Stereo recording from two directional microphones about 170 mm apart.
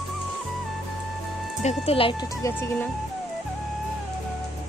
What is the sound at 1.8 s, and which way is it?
Speech, 30° left (ahead or behind).